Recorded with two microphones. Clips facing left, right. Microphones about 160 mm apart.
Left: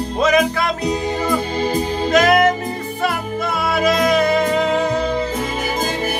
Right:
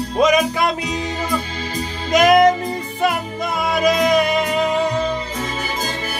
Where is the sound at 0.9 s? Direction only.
55° left (ahead or behind).